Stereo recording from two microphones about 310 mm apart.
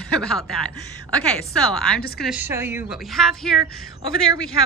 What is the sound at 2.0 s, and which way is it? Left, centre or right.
Speech, left.